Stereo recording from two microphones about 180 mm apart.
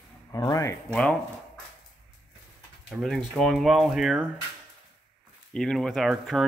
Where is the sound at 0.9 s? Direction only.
5° left (ahead or behind).